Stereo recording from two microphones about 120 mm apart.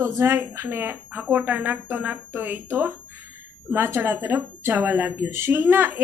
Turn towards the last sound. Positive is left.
turn(degrees=-15)  # may be behind; listen again after turning